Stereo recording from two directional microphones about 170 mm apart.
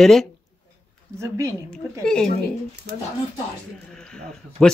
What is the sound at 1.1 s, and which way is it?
Speech, 20° right (ahead or behind).